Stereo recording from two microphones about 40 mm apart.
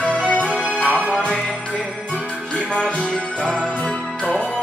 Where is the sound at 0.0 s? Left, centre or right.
Left.